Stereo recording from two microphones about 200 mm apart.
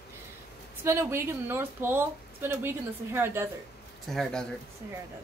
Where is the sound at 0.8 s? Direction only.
10° right (ahead or behind).